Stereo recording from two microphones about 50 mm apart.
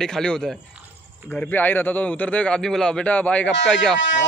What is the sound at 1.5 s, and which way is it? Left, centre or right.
A man's voice, left.